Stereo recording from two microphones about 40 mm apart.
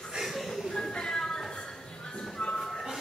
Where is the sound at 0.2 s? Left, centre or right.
Centre.